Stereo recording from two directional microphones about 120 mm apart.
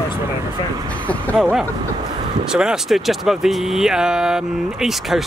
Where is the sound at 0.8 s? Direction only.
10° left (ahead or behind).